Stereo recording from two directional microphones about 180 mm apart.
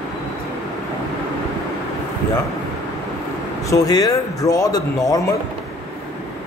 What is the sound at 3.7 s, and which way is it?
Speech, 20° left (ahead or behind).